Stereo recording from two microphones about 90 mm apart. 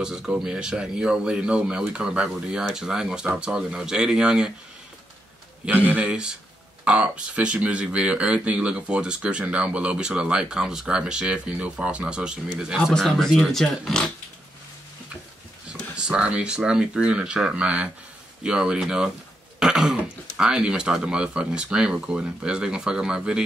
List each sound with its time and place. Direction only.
0.0 s speech: 5° right (ahead or behind)
5.7 s speech: 20° right (ahead or behind); by 14.0 s 5° left (ahead or behind)
16.0 s speech: 10° right (ahead or behind)